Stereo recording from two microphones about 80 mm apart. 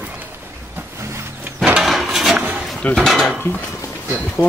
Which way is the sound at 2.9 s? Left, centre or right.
Centre.